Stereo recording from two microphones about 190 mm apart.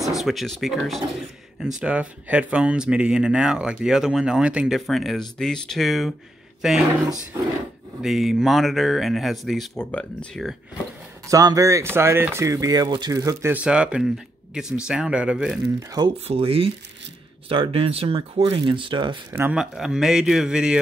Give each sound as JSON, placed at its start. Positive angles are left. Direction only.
{"t": 0.1, "sound": "speech", "side_deg": 0}
{"t": 8.0, "sound": "speech", "side_deg": 0}
{"t": 11.2, "sound": "speech", "side_deg": -15}
{"t": 15.9, "sound": "speech", "side_deg": -25}
{"t": 19.3, "sound": "speech", "side_deg": -5}